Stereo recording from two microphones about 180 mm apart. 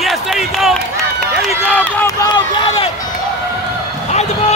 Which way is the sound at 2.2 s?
25° left (ahead or behind).